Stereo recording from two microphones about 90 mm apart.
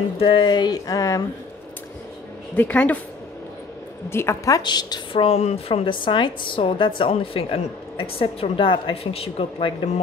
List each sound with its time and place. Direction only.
0.3 s speech: 55° left (ahead or behind); by 1.2 s 35° left (ahead or behind)
2.5 s speech: 15° left (ahead or behind)
4.1 s a woman's voice: 30° left (ahead or behind)
4.6 s speech: 50° left (ahead or behind)
5.1 s a woman's voice: 90° left